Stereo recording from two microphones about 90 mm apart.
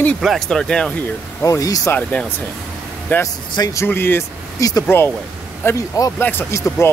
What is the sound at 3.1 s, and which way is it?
Speech, 20° left (ahead or behind).